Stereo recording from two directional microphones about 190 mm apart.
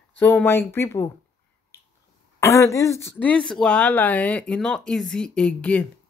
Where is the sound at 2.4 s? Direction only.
15° left (ahead or behind).